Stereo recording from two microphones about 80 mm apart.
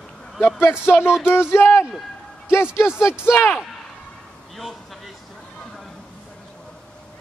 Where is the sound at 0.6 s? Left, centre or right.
Left.